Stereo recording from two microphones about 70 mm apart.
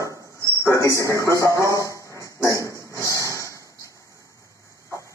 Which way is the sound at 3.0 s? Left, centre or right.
Left.